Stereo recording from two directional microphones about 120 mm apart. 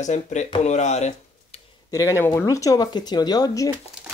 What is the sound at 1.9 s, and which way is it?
Speech, 25° left (ahead or behind).